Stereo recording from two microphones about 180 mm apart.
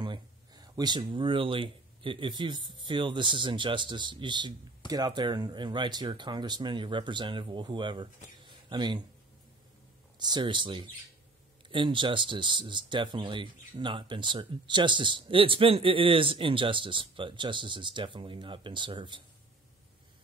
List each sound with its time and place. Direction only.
0.0 s speech: 25° right (ahead or behind)
8.5 s a sound: 25° right (ahead or behind)
10.1 s speech: 25° right (ahead or behind)